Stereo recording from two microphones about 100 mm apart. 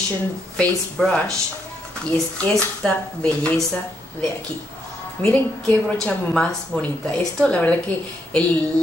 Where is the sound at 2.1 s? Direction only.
20° left (ahead or behind).